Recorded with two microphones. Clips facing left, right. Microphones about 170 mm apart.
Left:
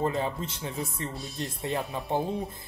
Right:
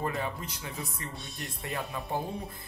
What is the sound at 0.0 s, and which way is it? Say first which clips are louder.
Speech: left 5 dB; 25° left (ahead or behind).